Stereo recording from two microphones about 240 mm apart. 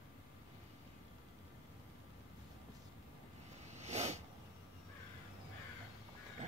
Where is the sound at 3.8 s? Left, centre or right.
Right.